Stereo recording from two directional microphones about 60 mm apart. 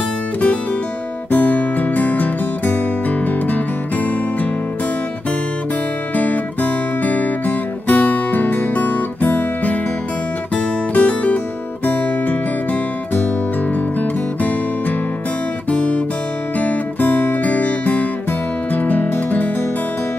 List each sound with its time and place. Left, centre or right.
1.3 s music: left
6.1 s music: left
15.7 s guitar: left
16.5 s music: left